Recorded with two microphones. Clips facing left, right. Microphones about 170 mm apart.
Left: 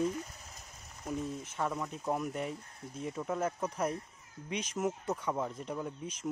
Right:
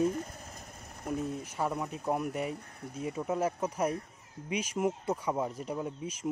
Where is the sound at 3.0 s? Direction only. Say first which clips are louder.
Right 3 dB; 5° right (ahead or behind).